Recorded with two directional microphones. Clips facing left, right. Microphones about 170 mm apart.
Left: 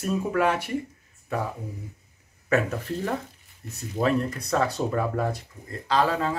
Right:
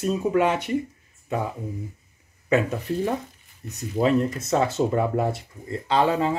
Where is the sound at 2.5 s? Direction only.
15° right (ahead or behind).